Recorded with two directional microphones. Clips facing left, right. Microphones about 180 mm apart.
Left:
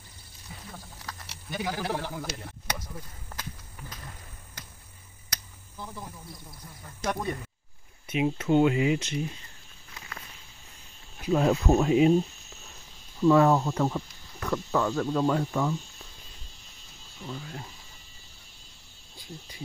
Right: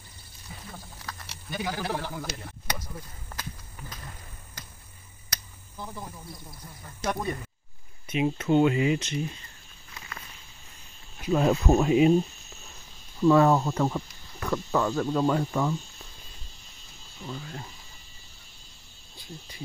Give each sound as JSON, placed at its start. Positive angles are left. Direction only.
{"t": 1.0, "sound": "a sound", "side_deg": 15}
{"t": 2.2, "sound": "a sound", "side_deg": 0}
{"t": 7.0, "sound": "speech", "side_deg": -5}
{"t": 8.1, "sound": "speech", "side_deg": 5}
{"t": 11.3, "sound": "speech", "side_deg": 0}
{"t": 13.2, "sound": "speech", "side_deg": 0}
{"t": 14.9, "sound": "speech", "side_deg": -15}
{"t": 15.2, "sound": "speech", "side_deg": 0}
{"t": 17.3, "sound": "speech", "side_deg": 5}